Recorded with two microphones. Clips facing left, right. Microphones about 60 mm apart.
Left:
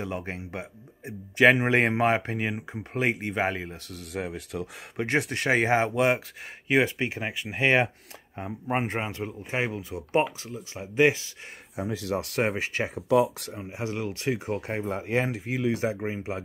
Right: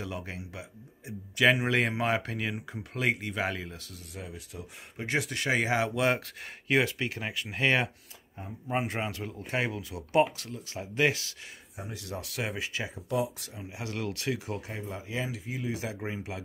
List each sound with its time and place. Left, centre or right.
0.0 s speech: left
3.9 s speech: left
6.7 s speech: left
8.4 s speech: left
9.0 s speech: centre
10.2 s speech: centre
10.7 s speech: centre
11.7 s speech: left
13.6 s speech: left
14.1 s speech: centre
14.4 s speech: left